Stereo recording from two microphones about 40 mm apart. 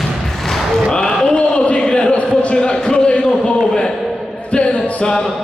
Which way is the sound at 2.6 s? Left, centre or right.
Centre.